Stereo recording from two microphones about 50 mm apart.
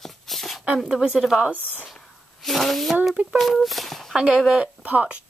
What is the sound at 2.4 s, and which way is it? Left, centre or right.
Speech, centre.